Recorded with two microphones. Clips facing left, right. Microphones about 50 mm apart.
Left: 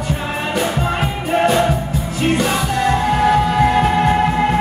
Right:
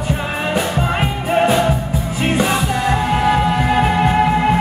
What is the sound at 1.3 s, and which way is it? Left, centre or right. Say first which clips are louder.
Music: even; centre.